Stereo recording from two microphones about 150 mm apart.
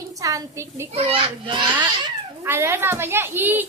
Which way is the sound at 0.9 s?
40° right (ahead or behind).